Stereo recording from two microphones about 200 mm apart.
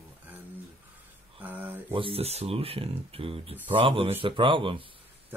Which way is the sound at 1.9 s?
30° right (ahead or behind).